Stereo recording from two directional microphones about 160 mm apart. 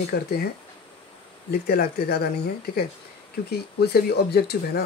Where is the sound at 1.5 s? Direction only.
75° left (ahead or behind).